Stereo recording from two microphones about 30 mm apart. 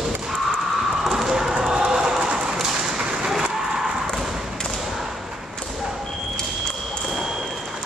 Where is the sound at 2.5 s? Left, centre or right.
Right.